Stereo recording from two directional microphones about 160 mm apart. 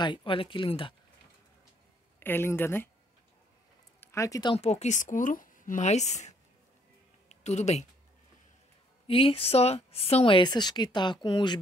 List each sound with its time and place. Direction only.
0.0 s speech: 30° left (ahead or behind)
2.1 s speech: 15° left (ahead or behind)
4.0 s speech: 20° left (ahead or behind)
4.6 s speech: 45° left (ahead or behind)
9.0 s speech: 35° left (ahead or behind)